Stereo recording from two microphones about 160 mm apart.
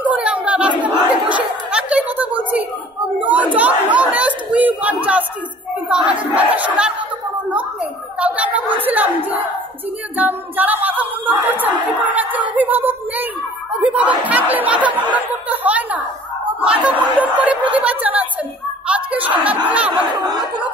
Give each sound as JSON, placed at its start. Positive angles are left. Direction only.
{"t": 0.0, "sound": "chatter", "side_deg": -10}
{"t": 3.2, "sound": "crowd", "side_deg": -10}
{"t": 3.5, "sound": "chatter", "side_deg": -10}
{"t": 5.9, "sound": "battle cry", "side_deg": -10}
{"t": 8.2, "sound": "a sound", "side_deg": -10}
{"t": 15.1, "sound": "chatter", "side_deg": -10}
{"t": 16.6, "sound": "snicker", "side_deg": -10}
{"t": 17.6, "sound": "a sound", "side_deg": -10}
{"t": 19.9, "sound": "snicker", "side_deg": -30}